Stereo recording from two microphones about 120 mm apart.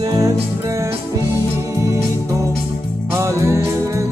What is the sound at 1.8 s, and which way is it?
Organ, 25° right (ahead or behind).